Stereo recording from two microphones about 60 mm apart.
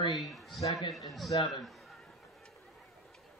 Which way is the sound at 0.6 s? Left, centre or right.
Left.